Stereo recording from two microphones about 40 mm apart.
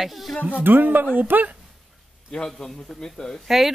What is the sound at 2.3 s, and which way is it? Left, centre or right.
A man's voice, centre.